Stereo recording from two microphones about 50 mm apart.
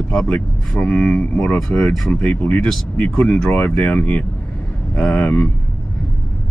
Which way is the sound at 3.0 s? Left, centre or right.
Left.